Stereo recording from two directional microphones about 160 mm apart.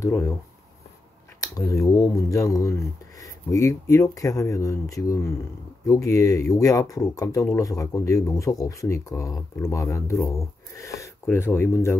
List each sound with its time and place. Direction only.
0.0 s speech: 20° left (ahead or behind)
1.4 s speech: 20° left (ahead or behind)